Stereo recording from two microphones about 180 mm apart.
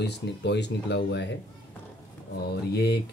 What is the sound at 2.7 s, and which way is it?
Mantra, 65° left (ahead or behind).